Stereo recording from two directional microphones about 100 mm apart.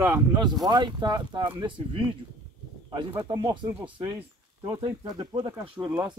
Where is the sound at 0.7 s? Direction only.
50° right (ahead or behind).